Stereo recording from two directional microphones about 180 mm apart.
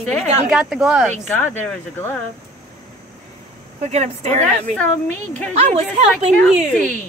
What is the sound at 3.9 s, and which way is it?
Speech, 40° right (ahead or behind).